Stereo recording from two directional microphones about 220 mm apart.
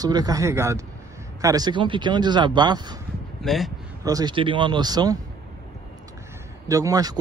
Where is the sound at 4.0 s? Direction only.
15° right (ahead or behind).